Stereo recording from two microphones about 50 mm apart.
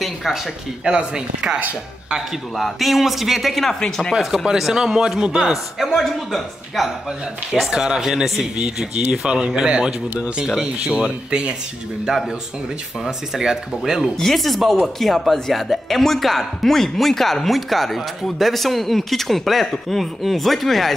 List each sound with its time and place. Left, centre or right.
0.0 s a sound: centre
0.8 s speech: centre
2.5 s speech: centre
4.1 s speech: centre
5.9 s speech: centre
7.7 s speech: centre
13.0 s speech: centre
14.1 s speech: centre